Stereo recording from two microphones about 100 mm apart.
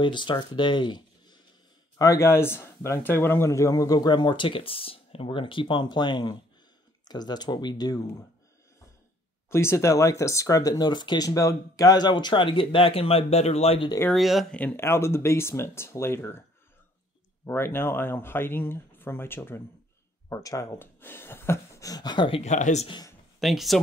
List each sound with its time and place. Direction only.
0.0 s speech: 50° left (ahead or behind)
2.0 s speech: 30° left (ahead or behind)
9.5 s speech: 25° left (ahead or behind); by 13.8 s 85° left
14.1 s speech: centre (ahead or behind)
14.5 s speech: 15° left (ahead or behind)
17.5 s speech: 25° left (ahead or behind)
20.2 s speech: 35° left (ahead or behind)
20.8 s speech: 20° left (ahead or behind); by 22.4 s 50° left (ahead or behind)
23.4 s speech: centre (ahead or behind)